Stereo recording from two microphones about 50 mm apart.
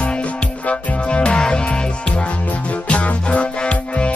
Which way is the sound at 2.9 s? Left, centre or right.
Left.